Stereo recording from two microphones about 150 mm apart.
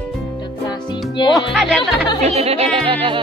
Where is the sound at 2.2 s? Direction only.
45° right (ahead or behind).